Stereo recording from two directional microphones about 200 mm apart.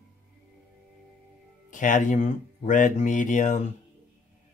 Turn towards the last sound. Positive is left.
turn(degrees=40)  # may be behind; listen again after turning